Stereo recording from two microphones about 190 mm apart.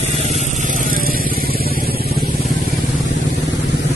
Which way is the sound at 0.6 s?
45° right (ahead or behind).